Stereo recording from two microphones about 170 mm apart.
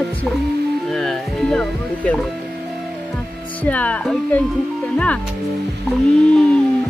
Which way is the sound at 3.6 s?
10° left (ahead or behind).